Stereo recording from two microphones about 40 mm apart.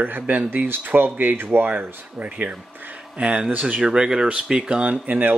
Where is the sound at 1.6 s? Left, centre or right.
Right.